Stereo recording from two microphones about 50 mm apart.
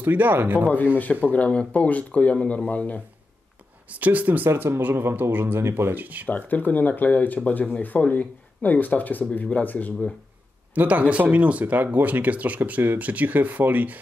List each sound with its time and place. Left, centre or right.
0.0 s speech: right
1.2 s speech: left
3.9 s speech: right
4.5 s speech: right
5.9 s speech: right
6.2 s speech: left
10.7 s speech: right